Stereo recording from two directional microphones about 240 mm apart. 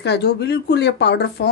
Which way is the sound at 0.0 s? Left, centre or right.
Left.